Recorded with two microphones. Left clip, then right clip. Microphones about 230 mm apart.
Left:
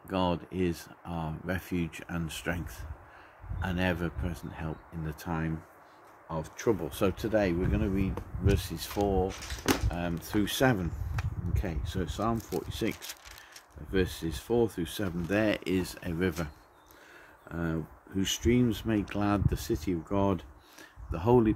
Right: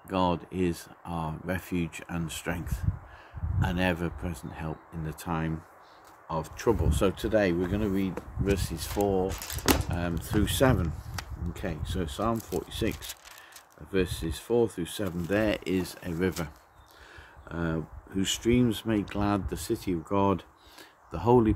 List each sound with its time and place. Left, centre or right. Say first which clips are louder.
0.1 s speech: right 3 dB; centre
13.9 s speech: right 1 dB; centre
17.5 s speech: right 2 dB; centre